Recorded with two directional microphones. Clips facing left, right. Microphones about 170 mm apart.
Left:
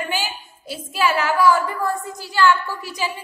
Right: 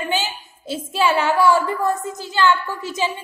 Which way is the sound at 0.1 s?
25° right (ahead or behind).